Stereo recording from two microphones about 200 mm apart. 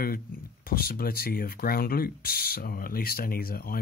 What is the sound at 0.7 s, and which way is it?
Speech, 45° left (ahead or behind).